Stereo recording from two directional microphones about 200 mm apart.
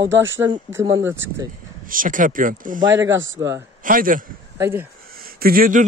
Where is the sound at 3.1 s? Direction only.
70° right (ahead or behind).